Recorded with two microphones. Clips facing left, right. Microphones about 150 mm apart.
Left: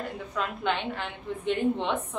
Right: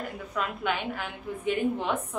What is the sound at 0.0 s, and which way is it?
A woman's voice, centre (ahead or behind).